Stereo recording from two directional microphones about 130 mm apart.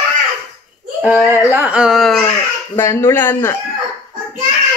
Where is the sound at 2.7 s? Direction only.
20° left (ahead or behind).